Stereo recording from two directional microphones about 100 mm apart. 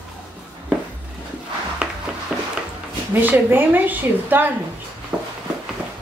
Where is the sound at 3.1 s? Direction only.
20° right (ahead or behind).